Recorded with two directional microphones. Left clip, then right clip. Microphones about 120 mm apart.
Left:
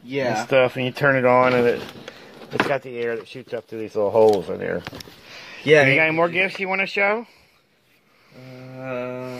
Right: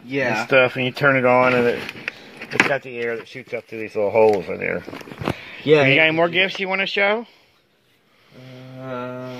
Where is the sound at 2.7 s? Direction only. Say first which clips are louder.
Right 1 dB; 30° left (ahead or behind).